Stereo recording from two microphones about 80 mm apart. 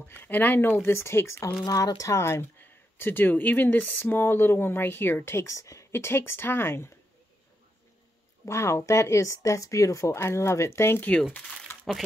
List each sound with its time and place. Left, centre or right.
0.1 s speech: left
1.6 s speech: left
8.5 s speech: left
11.7 s crumpling: left